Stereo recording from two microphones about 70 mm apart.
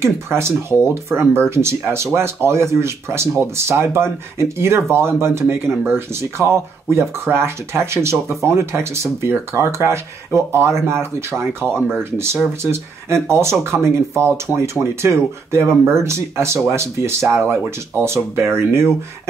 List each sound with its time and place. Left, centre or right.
0.0 s speech: right